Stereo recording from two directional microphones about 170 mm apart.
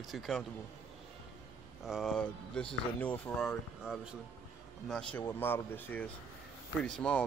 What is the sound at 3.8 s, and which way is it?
Speech, 5° right (ahead or behind).